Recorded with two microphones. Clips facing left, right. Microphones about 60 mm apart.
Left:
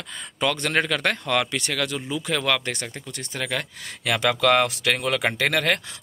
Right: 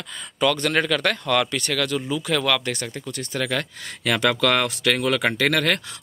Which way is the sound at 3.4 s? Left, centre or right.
Centre.